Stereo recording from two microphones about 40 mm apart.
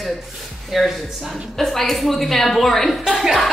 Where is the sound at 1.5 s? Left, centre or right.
Centre.